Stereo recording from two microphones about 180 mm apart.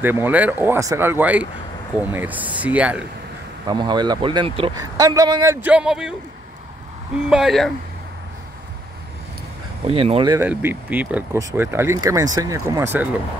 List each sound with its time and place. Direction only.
0.0 s speech: 10° right (ahead or behind)
3.6 s speech: 25° right (ahead or behind); by 6.1 s 5° right (ahead or behind)
7.2 s speech: 5° right (ahead or behind)
9.8 s speech: 30° right (ahead or behind)
10.3 s speech: 10° right (ahead or behind)